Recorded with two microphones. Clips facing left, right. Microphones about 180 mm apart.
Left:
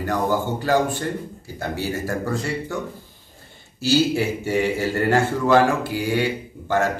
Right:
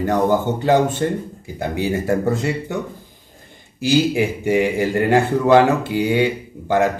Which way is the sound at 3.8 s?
15° right (ahead or behind).